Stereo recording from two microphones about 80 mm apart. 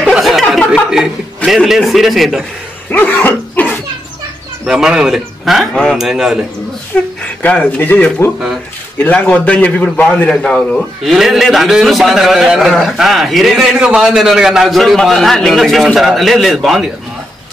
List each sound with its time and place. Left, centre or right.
0.2 s chuckle: centre
0.9 s a man's voice: centre
2.9 s dog: left
4.6 s a man's voice: centre
5.9 s a man's voice: centre
6.9 s a man's voice: centre
11.1 s a man's voice: centre